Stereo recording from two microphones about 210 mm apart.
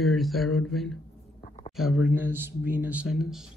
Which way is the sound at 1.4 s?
35° left (ahead or behind).